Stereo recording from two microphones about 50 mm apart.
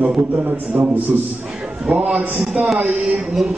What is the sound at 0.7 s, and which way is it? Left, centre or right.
Speech, right.